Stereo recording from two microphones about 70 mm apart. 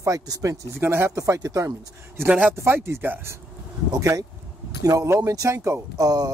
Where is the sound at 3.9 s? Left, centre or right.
Right.